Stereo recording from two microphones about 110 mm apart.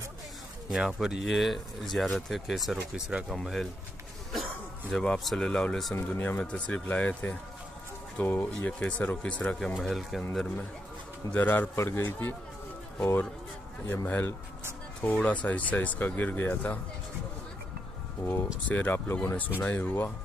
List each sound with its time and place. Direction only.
0.7 s speech: 5° right (ahead or behind)
4.9 s speech: 5° left (ahead or behind)
5.9 s speech: 20° left (ahead or behind); by 10.2 s centre (ahead or behind)
11.3 s a man's voice: 15° left (ahead or behind)
18.7 s speech: 15° left (ahead or behind)